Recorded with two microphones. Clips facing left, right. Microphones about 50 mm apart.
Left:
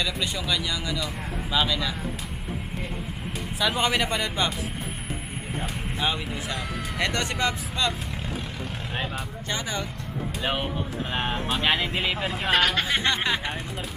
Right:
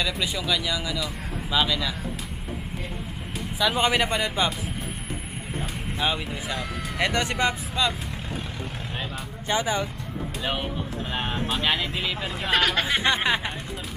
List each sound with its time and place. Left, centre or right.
0.0 s speech: centre
3.7 s speech: centre
5.9 s speech: centre
9.5 s speech: centre
10.4 s speech: centre
12.4 s speech: centre
13.0 s speech: centre